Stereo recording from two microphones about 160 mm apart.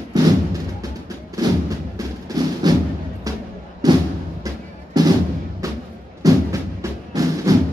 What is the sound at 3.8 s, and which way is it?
Music, 25° right (ahead or behind).